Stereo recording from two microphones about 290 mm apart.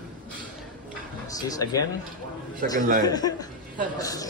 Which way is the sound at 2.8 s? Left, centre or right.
Right.